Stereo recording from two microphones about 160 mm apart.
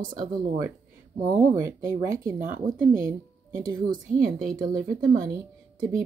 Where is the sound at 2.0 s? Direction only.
20° right (ahead or behind).